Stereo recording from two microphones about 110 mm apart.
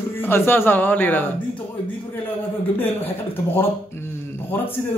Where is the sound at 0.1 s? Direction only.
20° left (ahead or behind).